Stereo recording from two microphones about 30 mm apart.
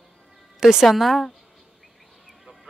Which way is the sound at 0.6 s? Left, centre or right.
Centre.